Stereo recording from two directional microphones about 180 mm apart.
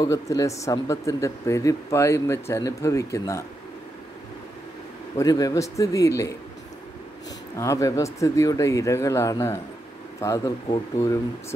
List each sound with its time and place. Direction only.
0.0 s speech: 15° left (ahead or behind)
5.1 s speech: 20° left (ahead or behind)
7.5 s speech: 15° left (ahead or behind)